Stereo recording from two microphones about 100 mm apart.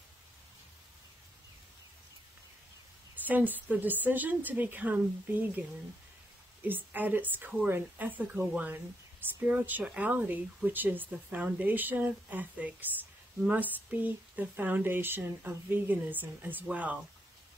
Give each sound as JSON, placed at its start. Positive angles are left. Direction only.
{"t": 3.3, "sound": "speech", "side_deg": -15}